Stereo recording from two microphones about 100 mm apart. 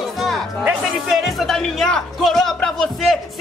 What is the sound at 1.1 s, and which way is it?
Music, centre (ahead or behind).